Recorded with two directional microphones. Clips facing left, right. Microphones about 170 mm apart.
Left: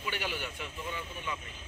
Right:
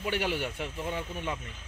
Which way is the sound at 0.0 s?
65° right (ahead or behind).